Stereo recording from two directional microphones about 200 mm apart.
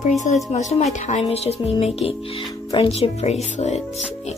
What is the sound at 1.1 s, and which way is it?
Speech, 30° left (ahead or behind).